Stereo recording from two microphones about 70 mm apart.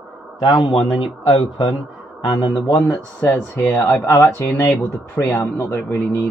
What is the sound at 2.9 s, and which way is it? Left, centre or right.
Speech, left.